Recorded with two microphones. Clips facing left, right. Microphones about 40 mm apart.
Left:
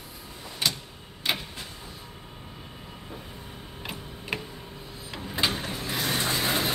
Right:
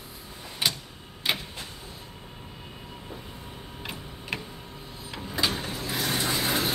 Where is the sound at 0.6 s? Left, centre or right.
Centre.